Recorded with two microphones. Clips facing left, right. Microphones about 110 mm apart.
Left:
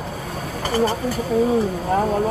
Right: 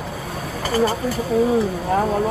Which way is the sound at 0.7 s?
40° right (ahead or behind).